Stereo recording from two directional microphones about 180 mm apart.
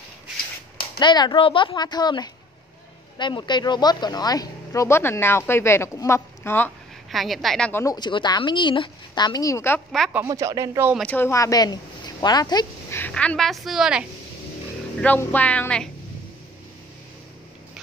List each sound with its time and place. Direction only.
0.9 s a woman's voice: 25° left (ahead or behind)
7.1 s a woman's voice: centre (ahead or behind)
7.8 s a woman's voice: 25° left (ahead or behind)
10.1 s speech: 20° right (ahead or behind)
11.1 s speech: 10° left (ahead or behind)
13.0 s a woman's voice: 5° left (ahead or behind)
15.0 s speech: 10° left (ahead or behind)